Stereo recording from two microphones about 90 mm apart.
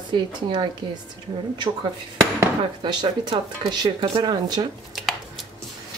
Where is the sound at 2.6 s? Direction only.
60° right (ahead or behind).